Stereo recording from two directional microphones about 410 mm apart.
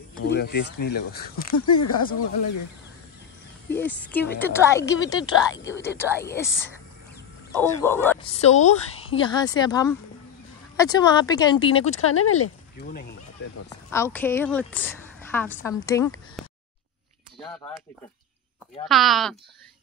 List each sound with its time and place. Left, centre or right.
0.2 s speech: left
0.7 s speech: left
1.5 s speech: left
3.7 s a woman's voice: centre
12.0 s speech: left
12.4 s speech: left
13.7 s a woman's voice: centre
16.4 s a sound: centre
18.9 s a woman's voice: centre